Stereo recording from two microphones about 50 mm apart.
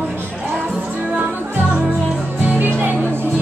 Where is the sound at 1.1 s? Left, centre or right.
Right.